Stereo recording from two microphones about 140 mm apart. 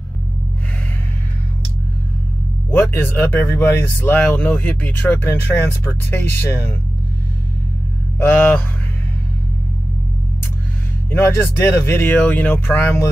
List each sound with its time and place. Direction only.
2.7 s speech: 15° left (ahead or behind)
8.2 s speech: 10° left (ahead or behind)
11.1 s speech: 15° left (ahead or behind)